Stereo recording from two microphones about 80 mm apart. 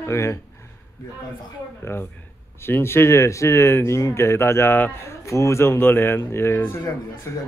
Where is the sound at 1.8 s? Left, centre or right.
Left.